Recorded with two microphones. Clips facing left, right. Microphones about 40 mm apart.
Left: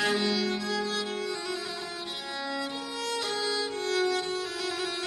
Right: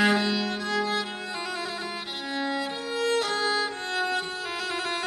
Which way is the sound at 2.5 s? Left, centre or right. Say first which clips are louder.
Right 4 dB; right.